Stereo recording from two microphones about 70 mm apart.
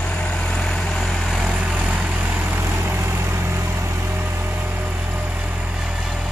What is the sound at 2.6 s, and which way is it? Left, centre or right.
Vehicle, right.